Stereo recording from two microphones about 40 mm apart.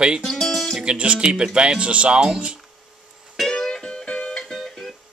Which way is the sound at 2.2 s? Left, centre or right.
Centre.